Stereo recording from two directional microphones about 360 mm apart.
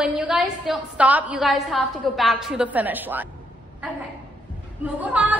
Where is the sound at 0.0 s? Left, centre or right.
Centre.